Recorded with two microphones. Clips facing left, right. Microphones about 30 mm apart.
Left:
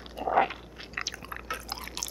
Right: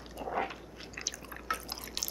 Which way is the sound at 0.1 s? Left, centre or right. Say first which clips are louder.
Left 9 dB; left.